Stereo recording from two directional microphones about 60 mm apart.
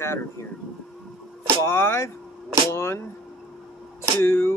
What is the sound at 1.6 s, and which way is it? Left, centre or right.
Speech, left.